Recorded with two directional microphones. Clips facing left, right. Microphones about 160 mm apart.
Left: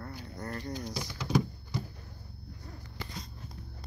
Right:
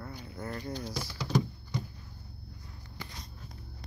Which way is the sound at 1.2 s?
10° left (ahead or behind).